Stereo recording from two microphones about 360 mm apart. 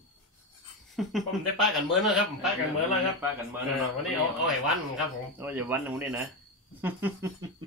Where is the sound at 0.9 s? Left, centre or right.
Centre.